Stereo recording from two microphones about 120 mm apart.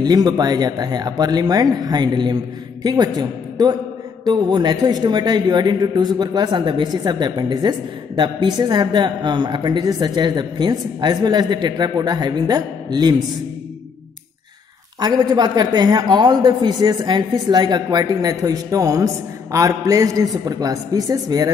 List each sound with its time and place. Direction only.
0.0 s a woman's voice: 35° right (ahead or behind)
15.0 s a woman's voice: 35° right (ahead or behind)